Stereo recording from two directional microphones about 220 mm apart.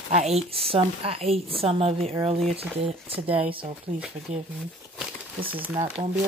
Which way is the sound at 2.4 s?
Centre (ahead or behind).